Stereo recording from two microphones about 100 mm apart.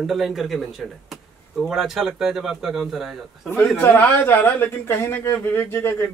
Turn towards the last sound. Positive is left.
turn(degrees=25)  # may be behind; listen again after turning